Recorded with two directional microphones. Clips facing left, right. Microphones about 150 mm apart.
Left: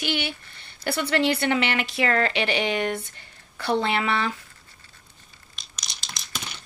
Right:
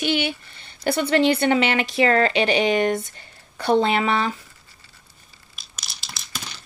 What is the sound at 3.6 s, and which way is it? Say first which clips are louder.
Speech: right 5 dB; 20° right (ahead or behind).